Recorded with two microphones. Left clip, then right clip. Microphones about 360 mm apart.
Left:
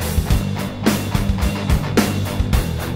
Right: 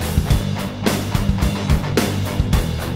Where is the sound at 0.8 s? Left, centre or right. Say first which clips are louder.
Left 1 dB; centre.